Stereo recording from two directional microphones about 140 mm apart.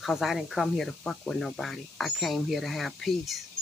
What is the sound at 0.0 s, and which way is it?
Speech, centre (ahead or behind).